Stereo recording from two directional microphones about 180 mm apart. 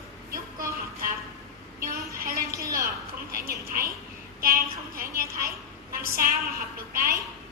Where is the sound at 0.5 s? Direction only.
55° right (ahead or behind).